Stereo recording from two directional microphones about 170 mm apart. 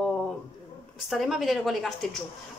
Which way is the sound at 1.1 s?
Centre (ahead or behind).